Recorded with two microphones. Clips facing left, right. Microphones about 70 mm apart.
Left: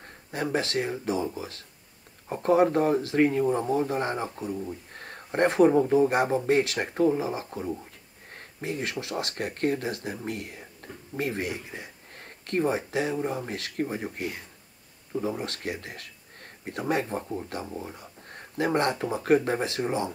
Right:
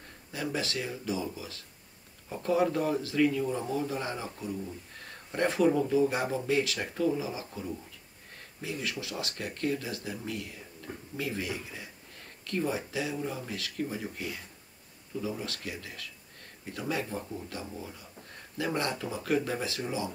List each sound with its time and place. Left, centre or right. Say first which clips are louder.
0.0 s speech: left 5 dB; left
4.6 s a sound: left 5 dB; left
5.8 s speech: left 5 dB; left